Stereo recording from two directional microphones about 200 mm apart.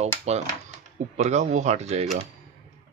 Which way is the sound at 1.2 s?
35° right (ahead or behind).